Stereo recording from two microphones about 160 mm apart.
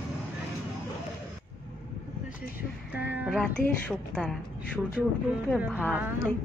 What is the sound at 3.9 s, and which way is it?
Speech, 5° left (ahead or behind).